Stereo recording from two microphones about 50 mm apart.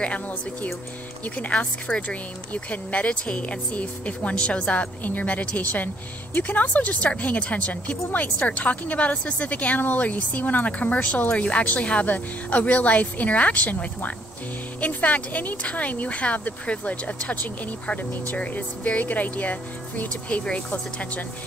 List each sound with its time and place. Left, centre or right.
0.0 s speech: left